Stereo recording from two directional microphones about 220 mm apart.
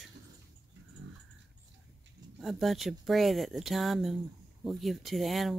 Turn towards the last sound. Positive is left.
turn(degrees=0)  # may be behind; listen again after turning